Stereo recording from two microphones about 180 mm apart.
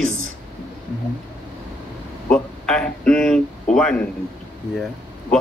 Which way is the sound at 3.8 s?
5° left (ahead or behind).